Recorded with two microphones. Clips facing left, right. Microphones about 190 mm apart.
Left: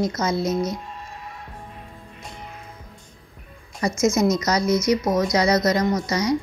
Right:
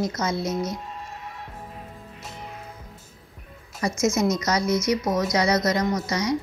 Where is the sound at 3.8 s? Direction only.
40° left (ahead or behind).